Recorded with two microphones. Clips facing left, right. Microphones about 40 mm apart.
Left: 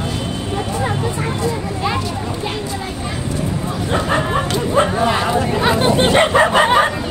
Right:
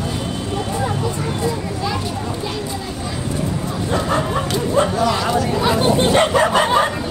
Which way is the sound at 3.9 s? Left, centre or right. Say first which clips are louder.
Left 2 dB; left.